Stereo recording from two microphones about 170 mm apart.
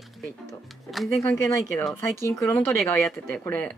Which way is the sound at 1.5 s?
15° left (ahead or behind).